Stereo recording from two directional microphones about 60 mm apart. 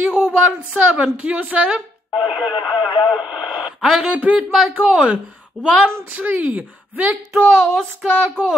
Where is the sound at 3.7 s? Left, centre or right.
Centre.